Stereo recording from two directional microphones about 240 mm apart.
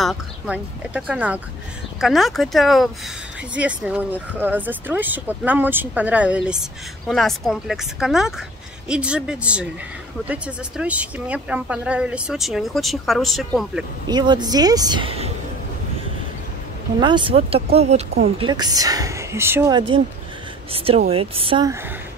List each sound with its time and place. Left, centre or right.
0.0 s a woman's voice: centre
14.0 s speech: centre
17.0 s speech: centre
20.7 s speech: right